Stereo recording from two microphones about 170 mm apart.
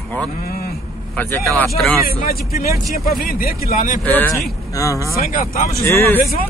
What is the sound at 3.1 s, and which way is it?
Speech, 60° left (ahead or behind).